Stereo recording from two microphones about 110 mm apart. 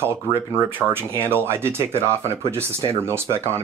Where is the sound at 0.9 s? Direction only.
20° right (ahead or behind).